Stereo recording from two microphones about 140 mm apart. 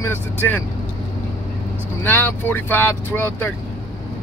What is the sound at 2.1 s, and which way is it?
Speech, 15° left (ahead or behind).